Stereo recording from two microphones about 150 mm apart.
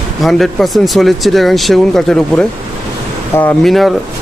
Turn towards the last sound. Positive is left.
turn(degrees=0)  # may be behind; listen again after turning